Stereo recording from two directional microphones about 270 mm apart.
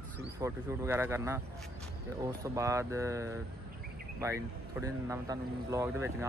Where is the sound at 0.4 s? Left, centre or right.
Centre.